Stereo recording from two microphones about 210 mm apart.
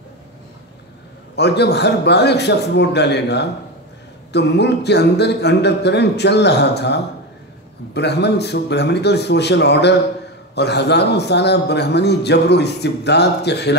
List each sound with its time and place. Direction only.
1.3 s a man's voice: 55° left (ahead or behind)